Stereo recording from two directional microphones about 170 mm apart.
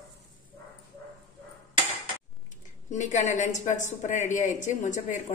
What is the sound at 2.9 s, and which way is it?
A woman's voice, 45° left (ahead or behind).